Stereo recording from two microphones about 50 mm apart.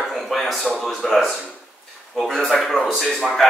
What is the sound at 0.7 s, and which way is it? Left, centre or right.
A man's voice, centre.